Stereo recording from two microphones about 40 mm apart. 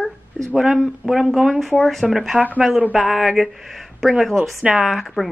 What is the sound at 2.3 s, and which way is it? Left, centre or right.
Speech, right.